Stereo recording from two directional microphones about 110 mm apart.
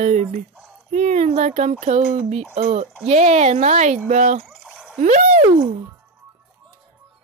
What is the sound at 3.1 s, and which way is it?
Speech, 90° right.